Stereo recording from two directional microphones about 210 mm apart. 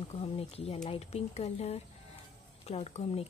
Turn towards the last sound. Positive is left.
turn(degrees=30)  # may be behind; listen again after turning